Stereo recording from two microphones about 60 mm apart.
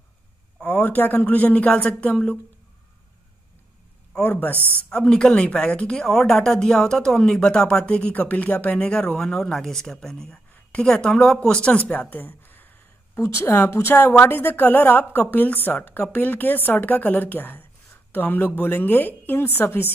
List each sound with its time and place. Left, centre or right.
0.7 s speech: left
4.2 s speech: left
4.6 s a woman's voice: right
4.9 s speech: centre
8.7 s speech: centre
10.5 s a sound: centre
10.9 s speech: centre; by 12.6 s left
13.1 s a woman's voice: left